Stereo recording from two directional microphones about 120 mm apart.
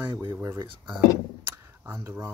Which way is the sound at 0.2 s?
20° right (ahead or behind).